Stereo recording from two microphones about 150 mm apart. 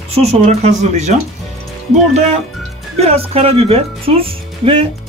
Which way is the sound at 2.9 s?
40° right (ahead or behind).